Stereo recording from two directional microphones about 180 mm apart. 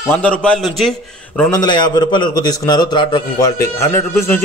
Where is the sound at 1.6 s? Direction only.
25° left (ahead or behind).